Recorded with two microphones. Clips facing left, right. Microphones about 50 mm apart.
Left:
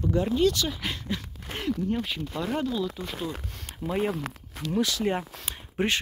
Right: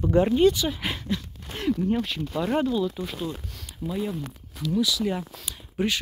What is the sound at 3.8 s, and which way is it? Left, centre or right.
Speech, left.